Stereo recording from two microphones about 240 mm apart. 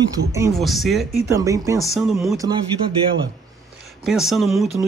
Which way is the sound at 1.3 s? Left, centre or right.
Centre.